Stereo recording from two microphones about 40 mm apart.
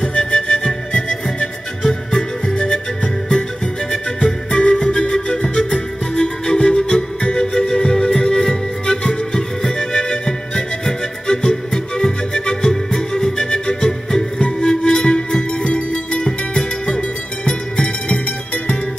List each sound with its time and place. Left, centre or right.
0.1 s flute: left
1.8 s music: centre
3.9 s music: left